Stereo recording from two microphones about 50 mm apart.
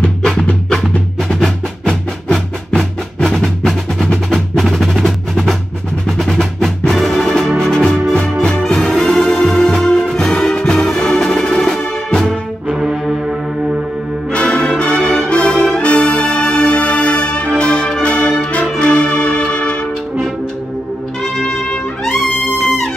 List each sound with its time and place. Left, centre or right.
0.2 s music: centre
12.7 s brass instrument: centre
14.3 s music: left
15.1 s brass instrument: left
17.6 s music: centre
21.4 s trumpet: centre
22.6 s music: centre